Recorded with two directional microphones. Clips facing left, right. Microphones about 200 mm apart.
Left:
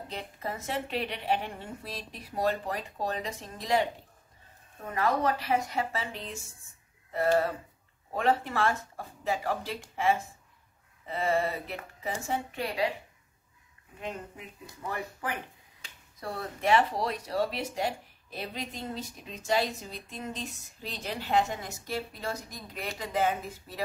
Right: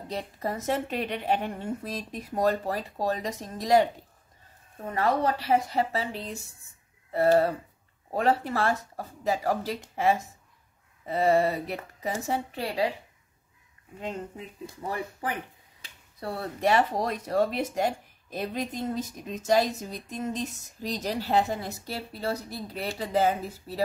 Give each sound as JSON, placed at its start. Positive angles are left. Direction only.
{"t": 0.1, "sound": "speech", "side_deg": -40}
{"t": 4.9, "sound": "speech", "side_deg": -30}
{"t": 14.0, "sound": "speech", "side_deg": -30}